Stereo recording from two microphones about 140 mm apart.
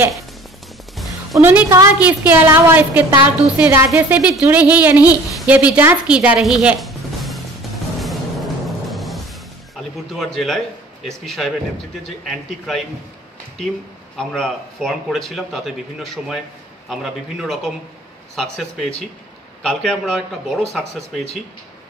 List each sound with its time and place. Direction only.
1.4 s a woman's voice: 10° right (ahead or behind)
8.0 s music: centre (ahead or behind)
10.1 s speech: centre (ahead or behind)
14.1 s speech: 5° left (ahead or behind)